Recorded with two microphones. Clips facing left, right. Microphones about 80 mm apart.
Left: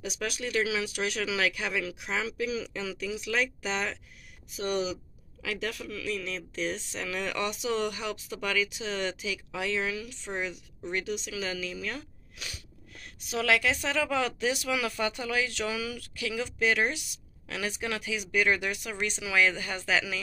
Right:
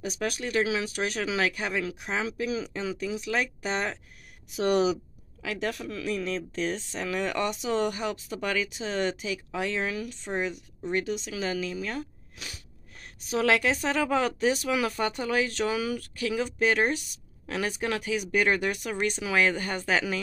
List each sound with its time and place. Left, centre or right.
0.0 s speech: right
4.6 s speech: right
5.4 s speech: right
12.9 s a woman's voice: right